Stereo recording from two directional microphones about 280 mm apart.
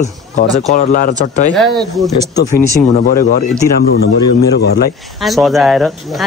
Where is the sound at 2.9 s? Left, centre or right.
Left.